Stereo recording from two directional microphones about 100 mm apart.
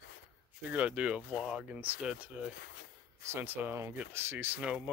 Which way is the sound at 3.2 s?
25° right (ahead or behind).